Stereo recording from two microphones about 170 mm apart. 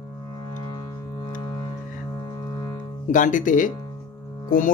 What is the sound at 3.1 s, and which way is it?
Speech, 50° left (ahead or behind).